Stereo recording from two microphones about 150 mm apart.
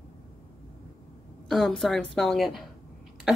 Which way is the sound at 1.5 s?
Centre (ahead or behind).